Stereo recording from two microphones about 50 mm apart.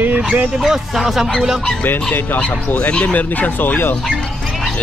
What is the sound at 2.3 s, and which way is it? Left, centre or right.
Speech, left.